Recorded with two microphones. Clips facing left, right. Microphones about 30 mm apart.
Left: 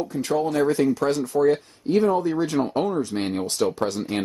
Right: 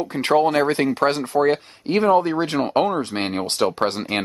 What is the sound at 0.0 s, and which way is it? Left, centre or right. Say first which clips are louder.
Speech: right 6 dB; right.